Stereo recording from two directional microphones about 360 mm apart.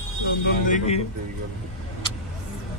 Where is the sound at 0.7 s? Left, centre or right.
Centre.